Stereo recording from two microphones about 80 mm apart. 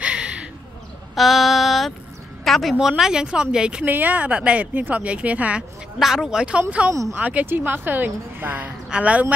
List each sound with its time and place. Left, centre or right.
0.0 s a sound: centre
1.1 s a sound: centre
2.4 s speech: centre
5.9 s speech: centre
6.9 s speech: right
7.2 s a woman's voice: centre